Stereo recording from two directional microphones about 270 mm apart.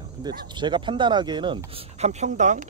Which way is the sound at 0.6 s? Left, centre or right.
Centre.